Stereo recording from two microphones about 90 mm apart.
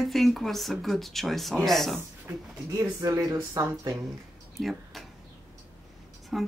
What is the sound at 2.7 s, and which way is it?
Speech, 40° right (ahead or behind).